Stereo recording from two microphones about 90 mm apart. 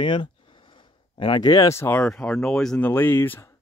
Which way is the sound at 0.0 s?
65° left (ahead or behind).